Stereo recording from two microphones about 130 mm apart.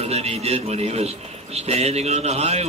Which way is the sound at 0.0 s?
55° right (ahead or behind).